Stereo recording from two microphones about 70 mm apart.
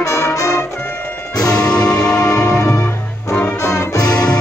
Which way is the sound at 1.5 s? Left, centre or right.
Centre.